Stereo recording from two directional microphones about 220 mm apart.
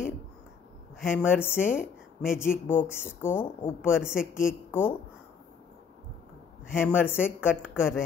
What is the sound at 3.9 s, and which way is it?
Speech, 5° right (ahead or behind).